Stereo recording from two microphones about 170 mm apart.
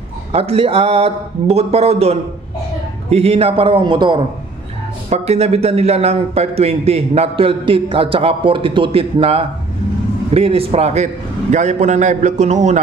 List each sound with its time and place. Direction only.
0.3 s a man's voice: 35° right (ahead or behind)
5.1 s a man's voice: 40° right (ahead or behind)